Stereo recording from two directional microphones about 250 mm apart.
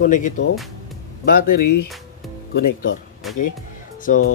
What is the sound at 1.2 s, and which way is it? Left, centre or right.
Speech, left.